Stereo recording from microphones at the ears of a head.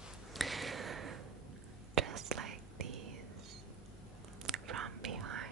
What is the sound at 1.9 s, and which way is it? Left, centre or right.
Whispering, right.